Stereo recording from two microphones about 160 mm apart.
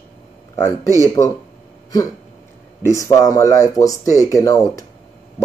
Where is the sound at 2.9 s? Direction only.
20° left (ahead or behind).